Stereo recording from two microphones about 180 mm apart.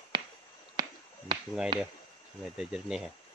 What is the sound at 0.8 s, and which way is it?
Finger snapping, 20° right (ahead or behind).